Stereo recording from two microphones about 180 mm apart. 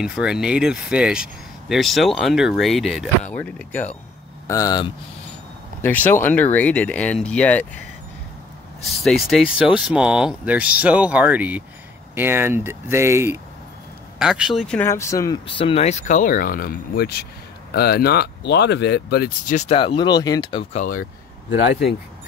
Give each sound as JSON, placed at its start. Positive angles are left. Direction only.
{"t": 0.0, "sound": "speech", "side_deg": -5}
{"t": 4.5, "sound": "speech", "side_deg": 20}
{"t": 5.8, "sound": "speech", "side_deg": 10}
{"t": 8.8, "sound": "speech", "side_deg": 0}
{"t": 14.1, "sound": "speech", "side_deg": -5}
{"t": 14.8, "sound": "speech", "side_deg": 15}
{"t": 19.5, "sound": "speech", "side_deg": 35}
{"t": 20.7, "sound": "speech", "side_deg": 50}